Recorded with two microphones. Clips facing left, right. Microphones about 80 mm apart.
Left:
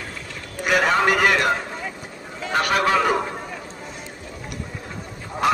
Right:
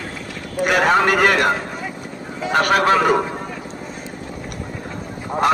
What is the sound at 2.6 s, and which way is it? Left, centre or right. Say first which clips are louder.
Speech: right 4 dB; right.